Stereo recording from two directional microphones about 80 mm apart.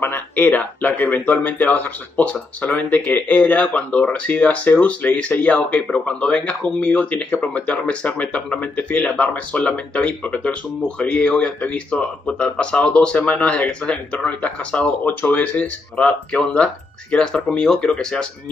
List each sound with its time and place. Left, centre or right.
0.0 s speech: left; by 18.3 s centre